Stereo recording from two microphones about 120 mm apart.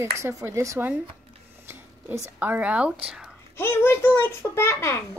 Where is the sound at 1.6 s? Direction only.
25° right (ahead or behind).